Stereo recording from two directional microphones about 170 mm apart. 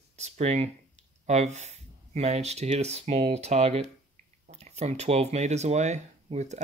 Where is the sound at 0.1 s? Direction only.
40° right (ahead or behind).